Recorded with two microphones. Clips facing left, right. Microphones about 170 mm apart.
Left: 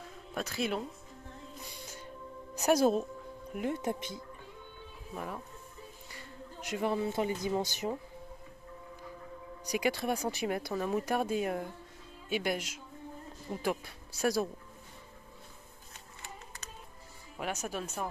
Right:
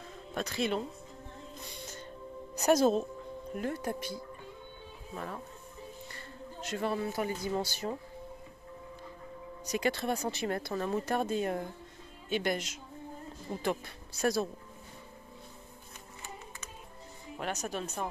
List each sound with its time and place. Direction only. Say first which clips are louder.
0.3 s speech: right 2 dB; 5° left (ahead or behind)
2.5 s a woman's voice: right 1 dB; 10° left (ahead or behind)
3.5 s speech: left 1 dB; 20° left (ahead or behind)
9.7 s speech: even; 10° left (ahead or behind)
17.4 s speech: even; 5° left (ahead or behind)